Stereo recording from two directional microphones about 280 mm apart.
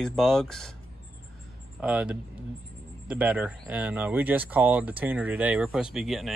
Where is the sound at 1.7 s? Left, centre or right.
Centre.